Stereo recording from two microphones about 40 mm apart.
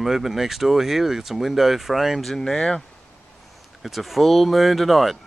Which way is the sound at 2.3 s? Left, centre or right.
Centre.